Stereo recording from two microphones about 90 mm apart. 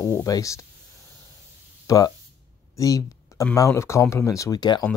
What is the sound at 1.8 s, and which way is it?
Speech, 40° left (ahead or behind).